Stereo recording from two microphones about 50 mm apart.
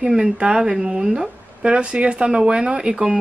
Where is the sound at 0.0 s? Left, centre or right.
Centre.